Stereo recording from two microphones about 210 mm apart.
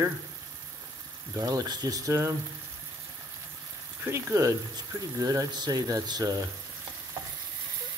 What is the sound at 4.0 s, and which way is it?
Speech, 10° right (ahead or behind).